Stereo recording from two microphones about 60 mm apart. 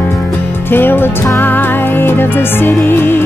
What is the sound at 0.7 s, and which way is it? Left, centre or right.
Music, left.